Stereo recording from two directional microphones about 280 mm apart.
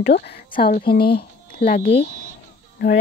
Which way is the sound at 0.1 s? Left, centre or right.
Left.